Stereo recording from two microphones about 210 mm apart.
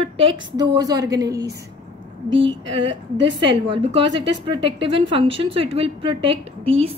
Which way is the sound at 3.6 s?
25° right (ahead or behind).